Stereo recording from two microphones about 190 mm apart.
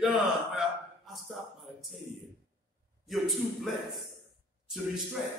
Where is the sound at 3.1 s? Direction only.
Centre (ahead or behind).